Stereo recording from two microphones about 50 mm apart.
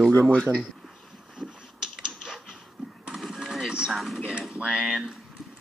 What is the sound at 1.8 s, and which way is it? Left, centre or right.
Mechanisms, centre.